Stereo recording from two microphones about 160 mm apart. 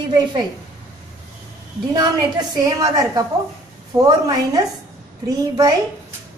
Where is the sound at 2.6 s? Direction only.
20° right (ahead or behind).